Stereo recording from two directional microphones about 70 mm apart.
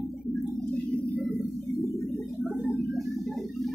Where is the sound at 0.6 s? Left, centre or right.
Centre.